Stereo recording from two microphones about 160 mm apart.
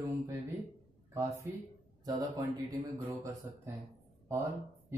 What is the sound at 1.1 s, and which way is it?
A man's voice, 15° right (ahead or behind).